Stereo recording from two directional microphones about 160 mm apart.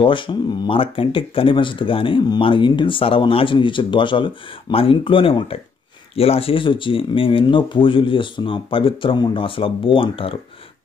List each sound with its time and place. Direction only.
0.0 s speech: 30° left (ahead or behind)